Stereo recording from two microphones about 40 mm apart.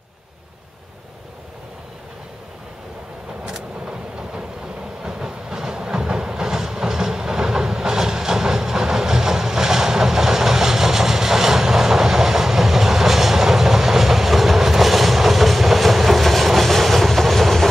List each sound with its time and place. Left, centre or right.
3.4 s vehicle: centre
5.0 s train: centre